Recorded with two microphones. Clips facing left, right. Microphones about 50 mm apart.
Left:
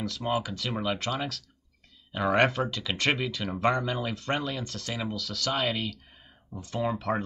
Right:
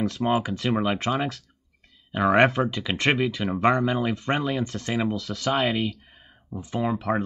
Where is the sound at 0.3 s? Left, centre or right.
Right.